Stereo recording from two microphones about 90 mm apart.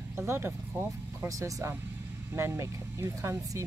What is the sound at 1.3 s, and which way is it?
Speech, 35° right (ahead or behind).